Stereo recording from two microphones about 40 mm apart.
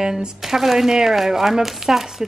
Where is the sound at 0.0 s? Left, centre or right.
Centre.